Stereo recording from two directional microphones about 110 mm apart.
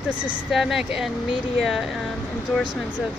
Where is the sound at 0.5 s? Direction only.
Centre (ahead or behind).